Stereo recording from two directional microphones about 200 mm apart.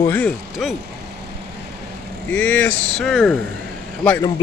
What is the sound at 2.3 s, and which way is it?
Speech, 5° left (ahead or behind).